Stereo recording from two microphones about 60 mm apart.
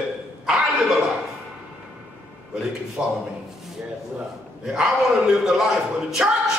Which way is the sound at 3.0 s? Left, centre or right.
Centre.